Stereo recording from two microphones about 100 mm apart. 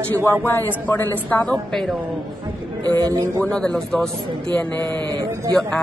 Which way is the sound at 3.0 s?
35° right (ahead or behind).